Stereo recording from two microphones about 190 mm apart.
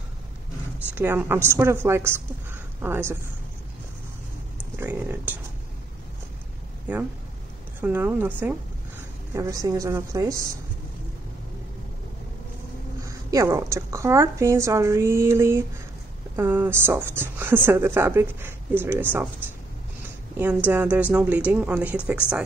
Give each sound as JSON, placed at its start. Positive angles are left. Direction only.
{"t": 0.9, "sound": "speech", "side_deg": -10}
{"t": 4.7, "sound": "speech", "side_deg": -10}
{"t": 6.9, "sound": "a woman's voice", "side_deg": -10}
{"t": 13.0, "sound": "speech", "side_deg": -15}
{"t": 20.3, "sound": "speech", "side_deg": -10}